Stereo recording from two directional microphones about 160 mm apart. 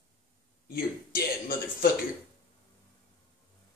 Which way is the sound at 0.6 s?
70° left (ahead or behind).